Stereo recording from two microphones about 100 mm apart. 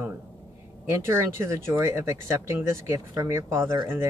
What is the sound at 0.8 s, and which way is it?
Speech, 25° right (ahead or behind).